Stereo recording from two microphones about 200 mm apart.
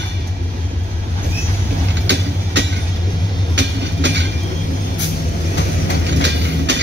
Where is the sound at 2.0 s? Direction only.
60° right (ahead or behind).